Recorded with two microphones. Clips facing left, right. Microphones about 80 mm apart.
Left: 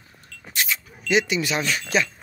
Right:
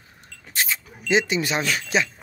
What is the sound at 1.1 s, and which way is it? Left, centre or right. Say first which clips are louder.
Speech: even; right.